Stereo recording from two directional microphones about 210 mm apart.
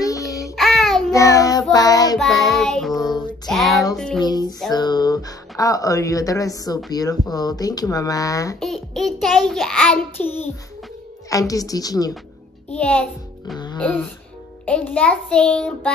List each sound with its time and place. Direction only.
0.6 s child singing: centre (ahead or behind)
1.1 s speech: 15° left (ahead or behind)
1.7 s child singing: 15° left (ahead or behind)
2.1 s child singing: centre (ahead or behind)
3.4 s music: centre (ahead or behind)
4.2 s music: 20° left (ahead or behind)
4.7 s speech: 20° left (ahead or behind)
8.5 s child singing: centre (ahead or behind)
11.2 s speech: 15° left (ahead or behind)
12.7 s child singing: 5° left (ahead or behind)
13.7 s speech: 5° left (ahead or behind)
14.7 s child singing: 5° left (ahead or behind)